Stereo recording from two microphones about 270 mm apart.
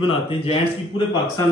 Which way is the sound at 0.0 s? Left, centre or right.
Centre.